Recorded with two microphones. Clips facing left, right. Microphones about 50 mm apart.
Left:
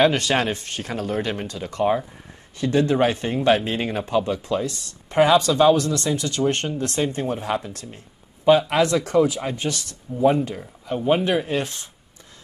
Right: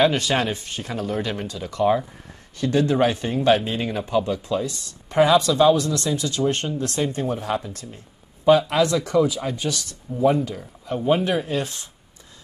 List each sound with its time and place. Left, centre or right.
0.0 s speech: left
7.7 s speech: left